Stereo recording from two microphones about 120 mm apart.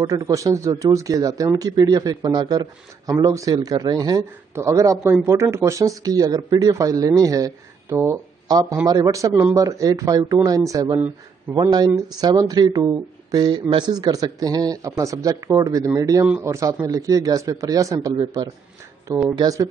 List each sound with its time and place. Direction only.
0.0 s speech: 30° right (ahead or behind)
8.5 s a man's voice: 35° right (ahead or behind)
9.3 s a man's voice: 15° right (ahead or behind)
9.6 s speech: 30° right (ahead or behind)
11.0 s speech: 15° right (ahead or behind)
11.7 s speech: 35° right (ahead or behind)
19.2 s speech: 30° right (ahead or behind)